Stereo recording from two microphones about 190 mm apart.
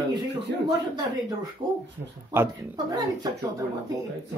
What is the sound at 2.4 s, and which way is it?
Speech, 20° right (ahead or behind).